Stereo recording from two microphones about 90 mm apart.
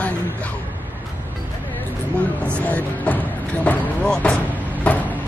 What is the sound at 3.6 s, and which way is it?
Vehicle, 15° left (ahead or behind).